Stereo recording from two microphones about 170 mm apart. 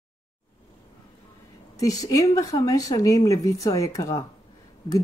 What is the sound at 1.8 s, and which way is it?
Speech, 20° left (ahead or behind).